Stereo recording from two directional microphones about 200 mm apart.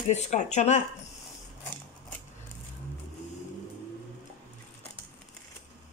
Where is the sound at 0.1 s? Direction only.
35° left (ahead or behind).